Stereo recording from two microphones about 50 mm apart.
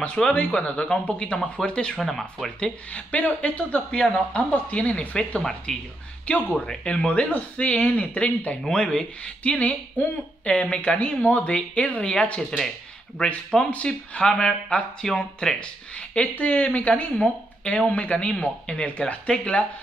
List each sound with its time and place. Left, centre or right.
0.0 s speech: centre
2.0 s speech: centre
2.9 s speech: left
5.4 s speech: centre
6.3 s speech: left; by 12.7 s centre
13.2 s speech: left
16.2 s speech: left